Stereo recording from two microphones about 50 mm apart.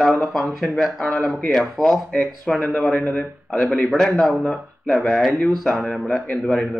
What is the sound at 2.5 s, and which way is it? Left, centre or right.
Speech, left.